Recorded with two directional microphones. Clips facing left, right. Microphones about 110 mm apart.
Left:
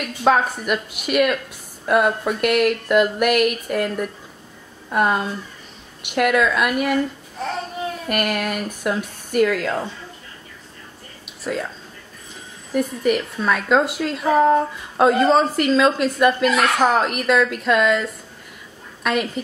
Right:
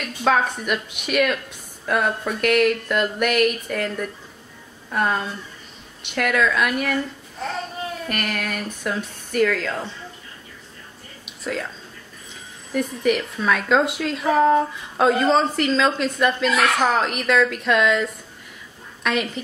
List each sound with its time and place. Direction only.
0.3 s speech: centre (ahead or behind)
8.1 s speech: 5° left (ahead or behind)
11.4 s speech: 5° left (ahead or behind)
12.7 s speech: centre (ahead or behind)